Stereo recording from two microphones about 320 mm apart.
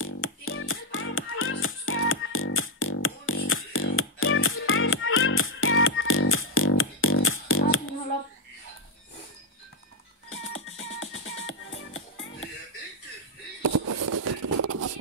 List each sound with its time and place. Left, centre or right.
0.0 s music: left
10.3 s music: left
13.6 s a sound: right